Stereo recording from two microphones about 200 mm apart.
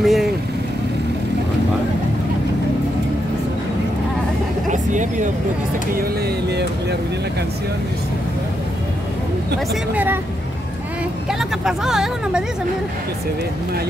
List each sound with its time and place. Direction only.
0.0 s vehicle: centre (ahead or behind)
4.6 s music: 40° right (ahead or behind)
11.6 s speech: centre (ahead or behind)